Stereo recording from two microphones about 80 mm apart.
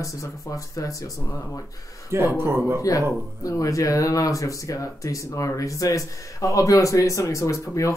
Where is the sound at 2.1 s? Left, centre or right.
Right.